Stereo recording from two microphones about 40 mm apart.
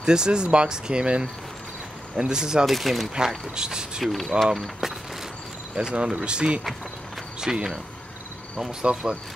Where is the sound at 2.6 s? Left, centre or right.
Centre.